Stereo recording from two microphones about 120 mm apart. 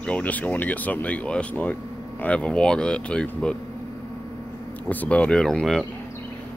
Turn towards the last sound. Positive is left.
turn(degrees=5)  # may be behind; listen again after turning